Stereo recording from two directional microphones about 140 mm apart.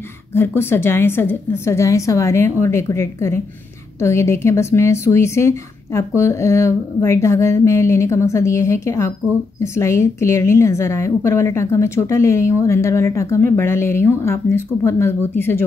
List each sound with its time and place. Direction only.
0.3 s a woman's voice: 15° left (ahead or behind)